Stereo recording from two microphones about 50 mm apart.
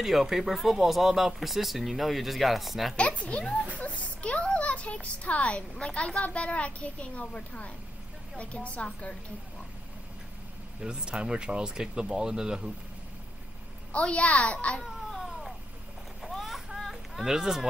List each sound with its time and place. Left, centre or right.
0.0 s speech: centre
3.0 s a child's voice: left
3.7 s a sound: left
5.2 s a child's voice: left
10.8 s speech: centre
13.9 s a child's voice: left
15.0 s baby cry: centre
16.2 s a sound: centre
16.9 s speech: centre